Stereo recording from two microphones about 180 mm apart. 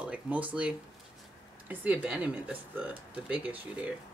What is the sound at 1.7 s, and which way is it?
Speech, 10° right (ahead or behind).